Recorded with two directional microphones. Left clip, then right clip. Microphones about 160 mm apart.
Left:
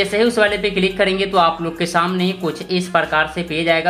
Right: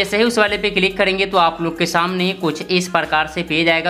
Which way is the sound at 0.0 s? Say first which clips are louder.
Even; 25° right (ahead or behind).